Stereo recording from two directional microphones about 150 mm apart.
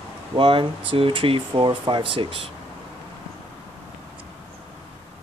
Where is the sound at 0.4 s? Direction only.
35° right (ahead or behind).